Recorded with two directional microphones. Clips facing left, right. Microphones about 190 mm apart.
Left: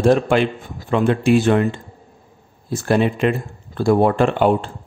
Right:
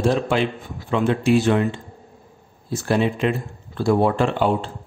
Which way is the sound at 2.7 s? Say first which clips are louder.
Left 3 dB; 55° left (ahead or behind).